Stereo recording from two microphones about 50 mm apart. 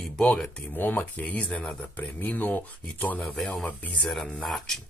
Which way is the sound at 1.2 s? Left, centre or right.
Left.